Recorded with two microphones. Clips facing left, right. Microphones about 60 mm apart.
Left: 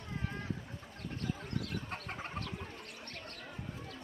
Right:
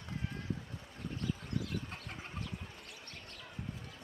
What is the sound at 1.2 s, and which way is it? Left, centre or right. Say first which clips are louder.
Bird: even; left.